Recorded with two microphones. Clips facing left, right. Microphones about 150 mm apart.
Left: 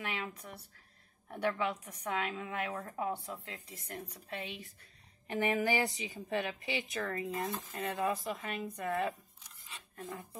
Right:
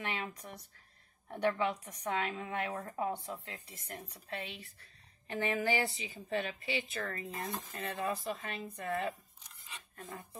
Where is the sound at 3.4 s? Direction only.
15° left (ahead or behind).